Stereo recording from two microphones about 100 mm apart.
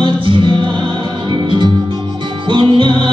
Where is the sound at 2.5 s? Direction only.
55° right (ahead or behind).